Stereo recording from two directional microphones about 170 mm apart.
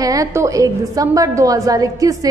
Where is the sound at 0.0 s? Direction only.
20° right (ahead or behind).